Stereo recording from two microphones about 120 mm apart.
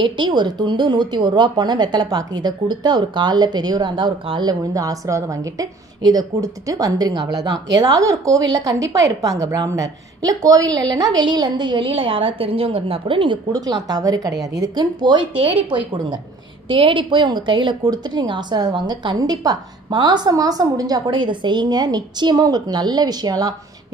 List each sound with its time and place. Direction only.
0.0 s a woman's voice: 40° right (ahead or behind)
13.5 s speech: 35° right (ahead or behind)